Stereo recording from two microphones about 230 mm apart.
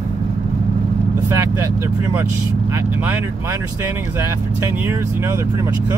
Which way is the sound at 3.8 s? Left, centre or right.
Centre.